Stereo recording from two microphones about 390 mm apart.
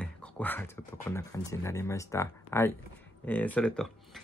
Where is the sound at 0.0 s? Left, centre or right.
Centre.